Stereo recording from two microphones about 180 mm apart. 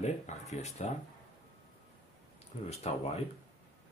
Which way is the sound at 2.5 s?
35° left (ahead or behind).